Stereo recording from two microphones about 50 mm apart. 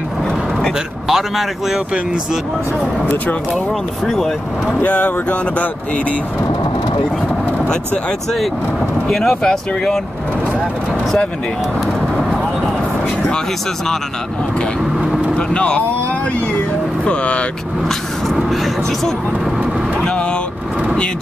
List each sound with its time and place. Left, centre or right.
1.0 s speech: centre
3.5 s speech: centre
4.8 s speech: left
9.1 s speech: centre
9.4 s speech: centre
15.0 s vehicle: centre
15.3 s vehicle: centre
17.0 s speech: left
18.3 s vehicle: centre
20.0 s vehicle: centre